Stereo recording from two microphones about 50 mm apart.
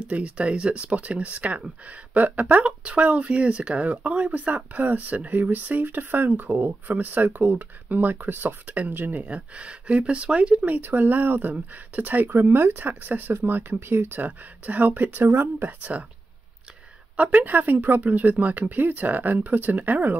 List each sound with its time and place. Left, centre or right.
0.1 s speech: right
9.2 s speech: right
10.6 s speech: right
12.3 s speech: right
17.2 s speech: right
18.0 s speech: right